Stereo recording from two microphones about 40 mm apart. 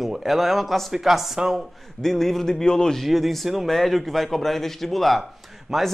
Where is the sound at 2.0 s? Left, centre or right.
Centre.